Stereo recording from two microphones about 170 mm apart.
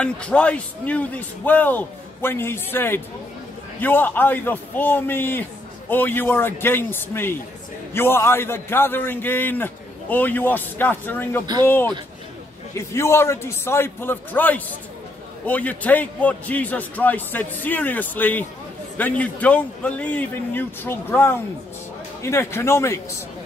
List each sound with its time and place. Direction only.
0.0 s a man's voice: 5° left (ahead or behind)